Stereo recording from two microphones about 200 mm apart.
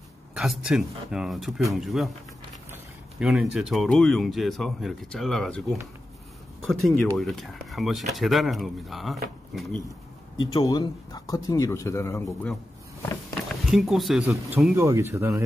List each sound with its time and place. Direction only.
0.3 s speech: centre (ahead or behind)
10.5 s speech: 15° left (ahead or behind)
13.3 s speech: centre (ahead or behind)